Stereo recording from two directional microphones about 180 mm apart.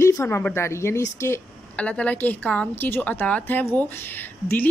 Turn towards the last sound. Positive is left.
turn(degrees=10)  # may be behind; listen again after turning